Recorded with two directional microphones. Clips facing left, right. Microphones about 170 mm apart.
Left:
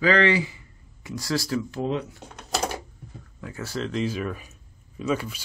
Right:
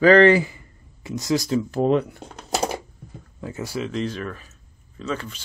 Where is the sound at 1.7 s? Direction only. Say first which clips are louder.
Right 8 dB; 55° right (ahead or behind).